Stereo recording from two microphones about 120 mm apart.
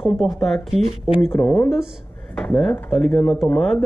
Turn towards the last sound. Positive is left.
turn(degrees=5)  # may be behind; listen again after turning